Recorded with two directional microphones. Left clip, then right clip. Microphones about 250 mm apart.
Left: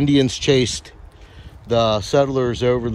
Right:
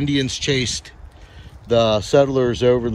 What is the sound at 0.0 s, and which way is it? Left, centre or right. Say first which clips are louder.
Speech: left 4 dB; centre.